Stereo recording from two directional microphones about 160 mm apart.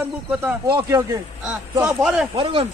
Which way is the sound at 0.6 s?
25° right (ahead or behind).